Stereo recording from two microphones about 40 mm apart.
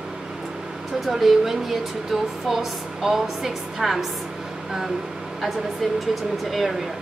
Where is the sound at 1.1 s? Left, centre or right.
Centre.